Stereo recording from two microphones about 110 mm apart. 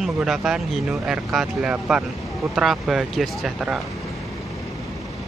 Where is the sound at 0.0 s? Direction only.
Centre (ahead or behind).